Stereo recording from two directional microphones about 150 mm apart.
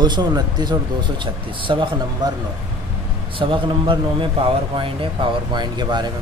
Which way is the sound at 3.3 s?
35° right (ahead or behind).